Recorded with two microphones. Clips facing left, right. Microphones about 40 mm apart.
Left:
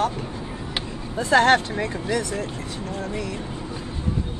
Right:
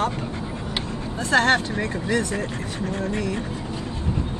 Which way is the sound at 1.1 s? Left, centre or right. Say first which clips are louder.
Left 2 dB; left.